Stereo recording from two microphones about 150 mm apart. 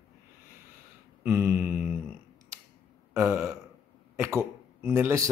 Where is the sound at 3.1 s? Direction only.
15° right (ahead or behind).